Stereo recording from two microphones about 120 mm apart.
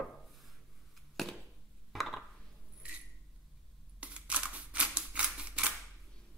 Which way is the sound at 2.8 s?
10° right (ahead or behind).